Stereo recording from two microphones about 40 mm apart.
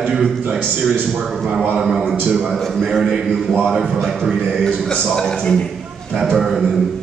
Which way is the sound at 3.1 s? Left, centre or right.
Centre.